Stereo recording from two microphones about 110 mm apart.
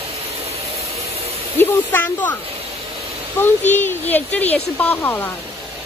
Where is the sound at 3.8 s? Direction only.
15° left (ahead or behind).